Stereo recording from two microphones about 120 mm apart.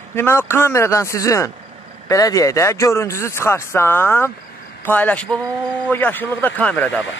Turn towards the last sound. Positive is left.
turn(degrees=10)  # may be behind; listen again after turning